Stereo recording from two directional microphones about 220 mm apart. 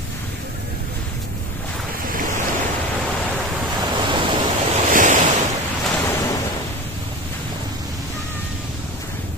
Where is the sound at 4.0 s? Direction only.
20° right (ahead or behind).